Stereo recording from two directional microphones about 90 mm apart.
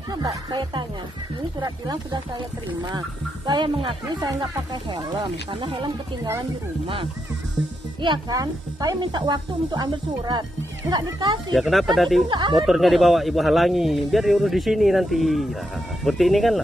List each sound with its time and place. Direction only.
0.1 s speech: 50° right (ahead or behind)
3.4 s speech: 60° right (ahead or behind)
8.3 s speech: 45° right (ahead or behind)
9.0 s speech: 55° right (ahead or behind)
11.5 s a man's voice: centre (ahead or behind)
12.3 s speech: 60° right (ahead or behind)
12.5 s a man's voice: centre (ahead or behind)